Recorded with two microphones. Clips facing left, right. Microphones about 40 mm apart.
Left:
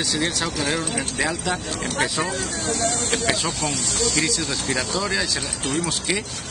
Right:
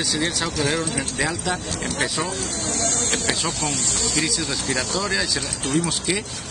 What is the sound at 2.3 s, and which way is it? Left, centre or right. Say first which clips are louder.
Speech: left 2 dB; left.